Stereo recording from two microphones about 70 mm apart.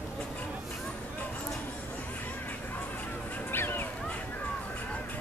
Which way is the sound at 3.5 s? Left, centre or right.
Left.